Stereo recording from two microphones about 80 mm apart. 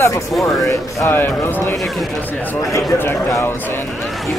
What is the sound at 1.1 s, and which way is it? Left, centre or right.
Speech, left.